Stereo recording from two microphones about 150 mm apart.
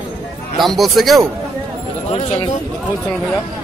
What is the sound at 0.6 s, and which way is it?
Speech, centre (ahead or behind).